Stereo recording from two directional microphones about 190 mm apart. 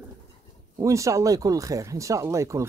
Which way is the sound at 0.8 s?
15° right (ahead or behind).